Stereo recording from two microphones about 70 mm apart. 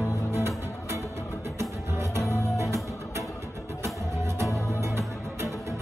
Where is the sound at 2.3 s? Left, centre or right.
Right.